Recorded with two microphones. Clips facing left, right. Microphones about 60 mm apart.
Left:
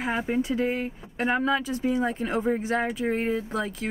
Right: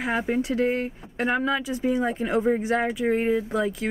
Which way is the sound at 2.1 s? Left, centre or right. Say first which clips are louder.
Right 2 dB; centre.